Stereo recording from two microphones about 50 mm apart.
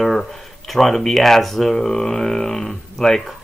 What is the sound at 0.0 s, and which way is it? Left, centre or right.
Speech, centre.